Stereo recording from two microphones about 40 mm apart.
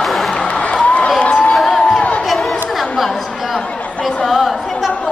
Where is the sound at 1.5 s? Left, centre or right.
Centre.